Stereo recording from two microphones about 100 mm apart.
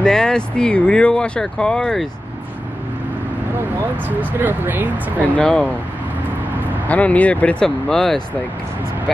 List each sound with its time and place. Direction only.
0.0 s speech: 10° left (ahead or behind)
4.3 s speech: 20° right (ahead or behind)
5.3 s speech: 10° left (ahead or behind)
6.9 s speech: 15° left (ahead or behind)